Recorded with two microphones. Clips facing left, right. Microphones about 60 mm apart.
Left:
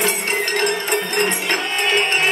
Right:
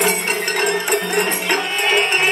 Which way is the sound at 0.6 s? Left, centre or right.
Centre.